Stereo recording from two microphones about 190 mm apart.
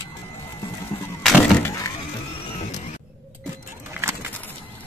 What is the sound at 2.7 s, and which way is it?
Mechanisms, 40° left (ahead or behind).